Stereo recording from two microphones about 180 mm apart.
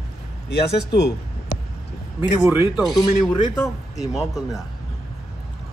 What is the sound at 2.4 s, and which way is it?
Speech, 5° right (ahead or behind).